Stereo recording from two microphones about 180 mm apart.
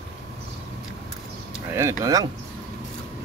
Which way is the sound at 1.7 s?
15° right (ahead or behind).